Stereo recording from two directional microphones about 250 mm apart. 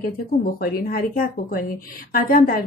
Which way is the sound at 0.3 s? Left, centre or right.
Left.